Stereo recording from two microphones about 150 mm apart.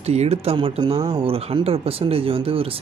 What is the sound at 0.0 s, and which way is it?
Speech, 45° right (ahead or behind).